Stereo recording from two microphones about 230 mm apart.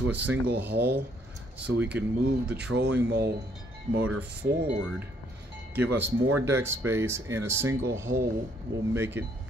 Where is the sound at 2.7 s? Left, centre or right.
Right.